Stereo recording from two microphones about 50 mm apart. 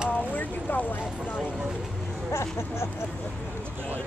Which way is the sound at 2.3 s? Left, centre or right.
Left.